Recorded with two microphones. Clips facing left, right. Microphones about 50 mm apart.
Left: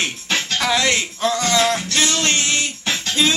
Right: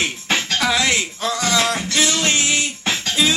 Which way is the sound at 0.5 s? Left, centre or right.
Centre.